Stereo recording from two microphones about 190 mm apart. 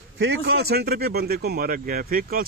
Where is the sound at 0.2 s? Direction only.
60° right (ahead or behind).